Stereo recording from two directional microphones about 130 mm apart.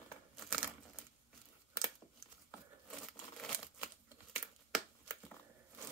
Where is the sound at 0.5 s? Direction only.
5° right (ahead or behind).